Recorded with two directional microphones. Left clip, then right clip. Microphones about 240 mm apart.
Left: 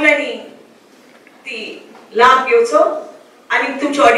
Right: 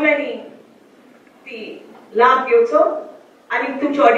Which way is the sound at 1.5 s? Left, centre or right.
Centre.